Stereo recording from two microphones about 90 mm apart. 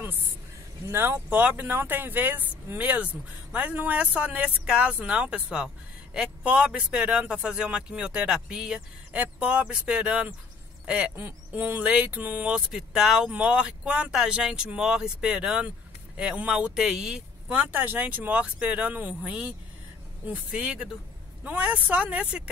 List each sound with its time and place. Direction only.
0.8 s speech: 25° right (ahead or behind)
12.5 s speech: 10° right (ahead or behind)